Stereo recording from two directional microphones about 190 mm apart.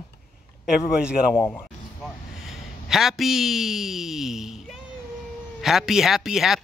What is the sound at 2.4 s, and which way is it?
Speech, centre (ahead or behind).